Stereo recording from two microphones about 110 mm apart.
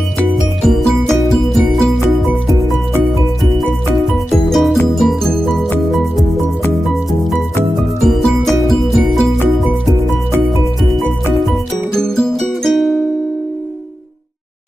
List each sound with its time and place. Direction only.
0.6 s music: 5° left (ahead or behind)
2.4 s music: 30° right (ahead or behind)
3.1 s music: centre (ahead or behind)
12.0 s music: centre (ahead or behind)